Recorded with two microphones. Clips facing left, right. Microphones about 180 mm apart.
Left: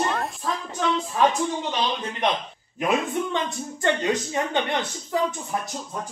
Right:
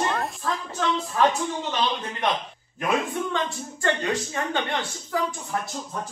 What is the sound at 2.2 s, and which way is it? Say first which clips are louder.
Speech: left 1 dB; 20° left (ahead or behind).